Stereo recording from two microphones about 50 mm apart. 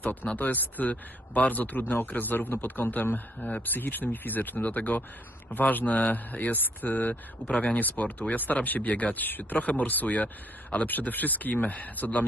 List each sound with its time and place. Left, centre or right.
0.0 s speech: left